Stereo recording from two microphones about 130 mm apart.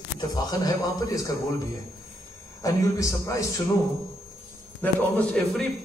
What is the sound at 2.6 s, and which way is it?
Speech, 25° left (ahead or behind).